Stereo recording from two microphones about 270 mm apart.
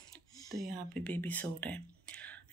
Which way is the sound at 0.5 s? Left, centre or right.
Centre.